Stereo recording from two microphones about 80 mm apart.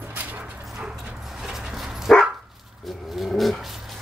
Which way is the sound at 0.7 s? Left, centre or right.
Centre.